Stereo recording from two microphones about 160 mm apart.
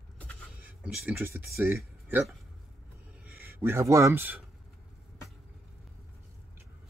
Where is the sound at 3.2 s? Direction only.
15° right (ahead or behind).